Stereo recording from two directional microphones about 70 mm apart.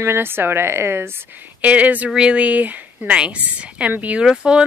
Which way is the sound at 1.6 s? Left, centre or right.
Centre.